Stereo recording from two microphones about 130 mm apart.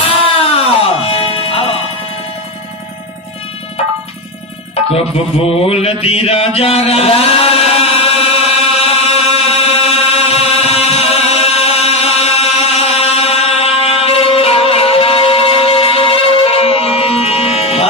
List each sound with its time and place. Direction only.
0.0 s music: 45° left (ahead or behind)
4.9 s mantra: 50° left (ahead or behind)